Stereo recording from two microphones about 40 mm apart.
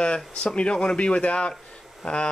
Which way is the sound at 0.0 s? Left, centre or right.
Left.